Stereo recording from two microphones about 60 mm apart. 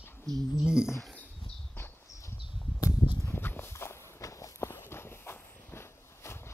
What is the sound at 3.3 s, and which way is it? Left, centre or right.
Walk, left.